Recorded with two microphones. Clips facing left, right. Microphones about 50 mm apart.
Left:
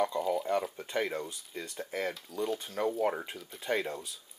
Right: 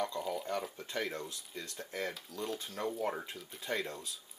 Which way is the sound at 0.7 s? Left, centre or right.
Centre.